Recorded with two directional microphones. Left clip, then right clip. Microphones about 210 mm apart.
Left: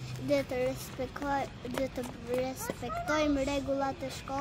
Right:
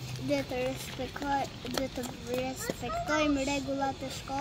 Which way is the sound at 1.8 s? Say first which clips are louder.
Even; 50° right (ahead or behind).